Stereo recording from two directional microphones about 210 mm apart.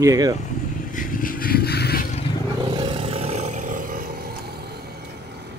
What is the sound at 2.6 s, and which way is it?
Vehicle, 20° right (ahead or behind).